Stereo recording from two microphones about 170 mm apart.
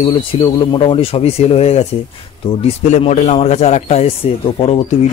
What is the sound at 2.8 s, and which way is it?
Speech, 40° left (ahead or behind).